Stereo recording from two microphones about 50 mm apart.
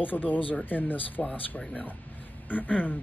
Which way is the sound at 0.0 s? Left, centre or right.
Left.